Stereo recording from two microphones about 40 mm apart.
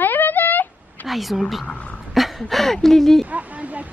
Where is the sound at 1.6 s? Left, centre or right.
Left.